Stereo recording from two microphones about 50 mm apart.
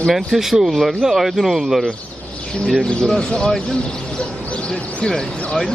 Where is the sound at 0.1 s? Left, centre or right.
Centre.